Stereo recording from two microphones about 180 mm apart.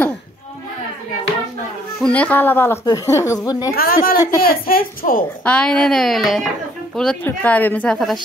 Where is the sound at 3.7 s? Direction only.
55° left (ahead or behind).